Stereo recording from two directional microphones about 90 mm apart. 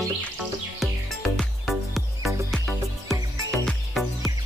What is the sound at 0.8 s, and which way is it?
Music, centre (ahead or behind).